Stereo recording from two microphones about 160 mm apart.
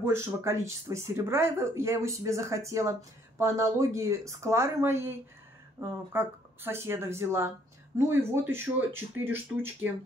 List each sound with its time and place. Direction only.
0.0 s speech: 15° right (ahead or behind)